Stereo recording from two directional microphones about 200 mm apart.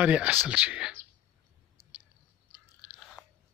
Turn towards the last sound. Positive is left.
turn(degrees=-5)  # may be behind; listen again after turning